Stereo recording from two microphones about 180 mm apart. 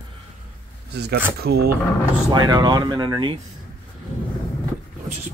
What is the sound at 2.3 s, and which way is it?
Speech, 25° right (ahead or behind).